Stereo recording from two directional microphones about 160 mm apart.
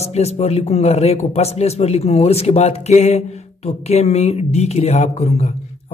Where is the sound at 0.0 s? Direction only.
40° left (ahead or behind).